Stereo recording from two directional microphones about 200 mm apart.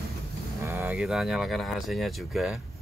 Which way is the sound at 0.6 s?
10° right (ahead or behind).